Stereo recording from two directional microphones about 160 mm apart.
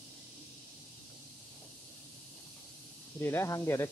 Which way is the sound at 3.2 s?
15° left (ahead or behind).